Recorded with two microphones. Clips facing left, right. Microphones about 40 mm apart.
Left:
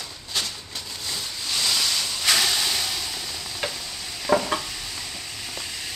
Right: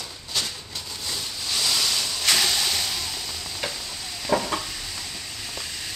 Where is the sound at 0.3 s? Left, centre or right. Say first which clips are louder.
Even; centre.